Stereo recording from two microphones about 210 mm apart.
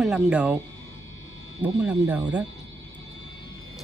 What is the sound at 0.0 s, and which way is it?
Speech, centre (ahead or behind).